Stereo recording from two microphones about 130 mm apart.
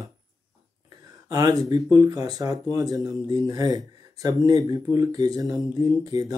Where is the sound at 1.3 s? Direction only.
30° right (ahead or behind).